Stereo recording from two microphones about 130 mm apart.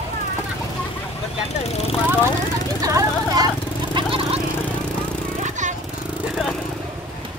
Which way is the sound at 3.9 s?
45° right (ahead or behind).